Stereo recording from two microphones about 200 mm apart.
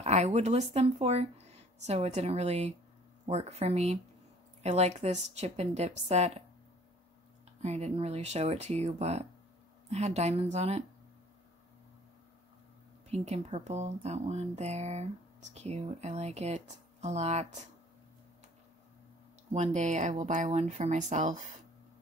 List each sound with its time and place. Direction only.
0.0 s speech: 30° right (ahead or behind)
7.6 s speech: 35° right (ahead or behind)
13.1 s speech: 35° right (ahead or behind)
19.5 s speech: 35° right (ahead or behind)